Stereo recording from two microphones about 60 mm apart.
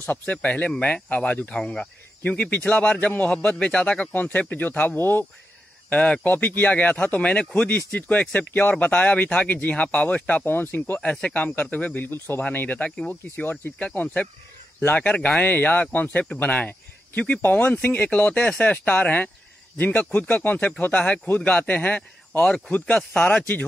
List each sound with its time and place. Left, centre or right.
0.0 s speech: left
1.6 s speech: centre
2.2 s speech: left
5.9 s speech: left
11.0 s speech: left
13.1 s speech: left